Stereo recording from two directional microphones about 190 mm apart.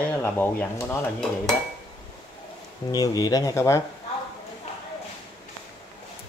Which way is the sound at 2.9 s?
20° left (ahead or behind).